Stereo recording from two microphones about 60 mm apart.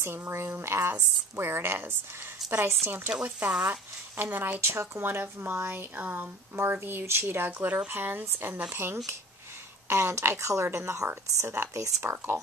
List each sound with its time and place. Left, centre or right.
0.0 s speech: right
3.3 s speech: right
9.8 s speech: right